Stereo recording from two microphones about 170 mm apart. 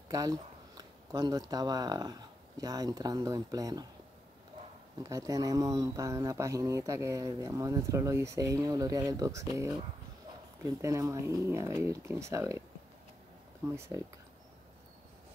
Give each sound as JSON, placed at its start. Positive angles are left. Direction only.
{"t": 0.1, "sound": "speech", "side_deg": -20}
{"t": 4.9, "sound": "speech", "side_deg": -20}
{"t": 13.7, "sound": "speech", "side_deg": -15}